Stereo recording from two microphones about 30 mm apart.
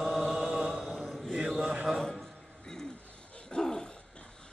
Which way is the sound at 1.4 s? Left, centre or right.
Centre.